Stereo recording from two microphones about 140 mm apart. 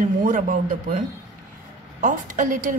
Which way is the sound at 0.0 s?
70° right (ahead or behind).